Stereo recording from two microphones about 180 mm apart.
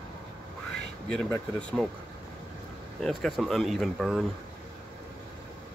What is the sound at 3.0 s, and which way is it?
Speech, centre (ahead or behind).